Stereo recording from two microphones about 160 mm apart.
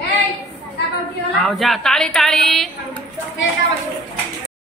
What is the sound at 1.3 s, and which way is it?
A woman's voice, centre (ahead or behind).